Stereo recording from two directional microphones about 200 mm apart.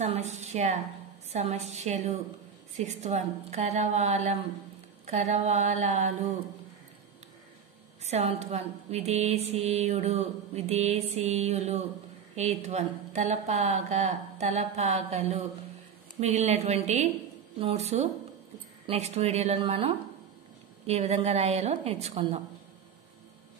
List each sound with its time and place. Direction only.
0.0 s a woman's voice: 35° right (ahead or behind)
8.0 s a woman's voice: 35° right (ahead or behind)